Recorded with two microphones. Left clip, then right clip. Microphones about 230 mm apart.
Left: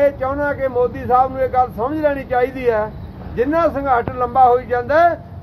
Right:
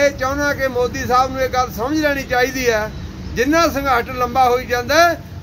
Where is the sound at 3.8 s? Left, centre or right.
Centre.